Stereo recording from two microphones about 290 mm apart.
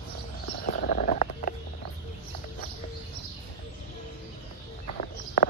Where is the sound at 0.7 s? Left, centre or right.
Left.